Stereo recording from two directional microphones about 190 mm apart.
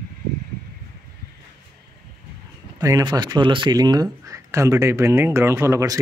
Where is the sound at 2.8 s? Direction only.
15° right (ahead or behind).